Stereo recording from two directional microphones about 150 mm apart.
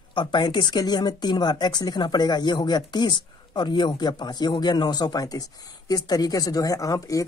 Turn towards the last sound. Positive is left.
turn(degrees=20)  # may be behind; listen again after turning